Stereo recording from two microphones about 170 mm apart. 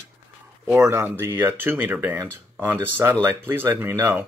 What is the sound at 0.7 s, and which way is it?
Speech, 10° right (ahead or behind).